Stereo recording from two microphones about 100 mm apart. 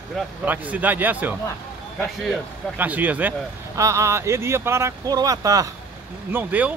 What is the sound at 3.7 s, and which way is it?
Speech, 30° right (ahead or behind).